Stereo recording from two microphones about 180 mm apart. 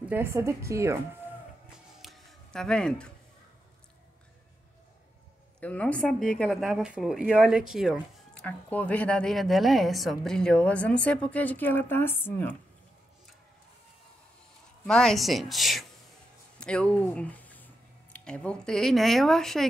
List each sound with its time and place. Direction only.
0.1 s speech: 15° right (ahead or behind)
2.0 s a sound: centre (ahead or behind)
5.6 s speech: 5° left (ahead or behind)
8.5 s a woman's voice: 10° left (ahead or behind)
14.9 s speech: 5° left (ahead or behind)